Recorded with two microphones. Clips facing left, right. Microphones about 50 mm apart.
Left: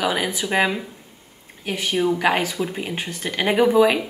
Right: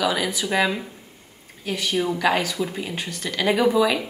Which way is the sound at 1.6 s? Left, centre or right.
Left.